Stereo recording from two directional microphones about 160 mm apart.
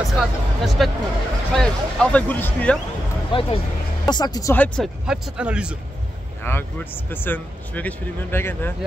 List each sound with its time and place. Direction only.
0.0 s speech: centre (ahead or behind)
3.3 s speech: 35° left (ahead or behind)
4.6 s speech: 5° left (ahead or behind)
5.0 s speech: 5° right (ahead or behind)
6.4 s speech: 15° left (ahead or behind)